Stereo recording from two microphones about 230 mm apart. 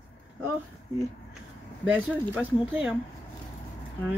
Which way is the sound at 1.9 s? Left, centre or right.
Centre.